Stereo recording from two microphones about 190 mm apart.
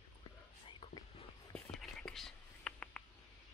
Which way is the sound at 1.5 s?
5° left (ahead or behind).